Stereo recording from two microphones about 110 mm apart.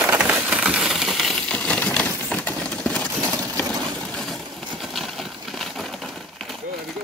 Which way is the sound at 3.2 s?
35° right (ahead or behind).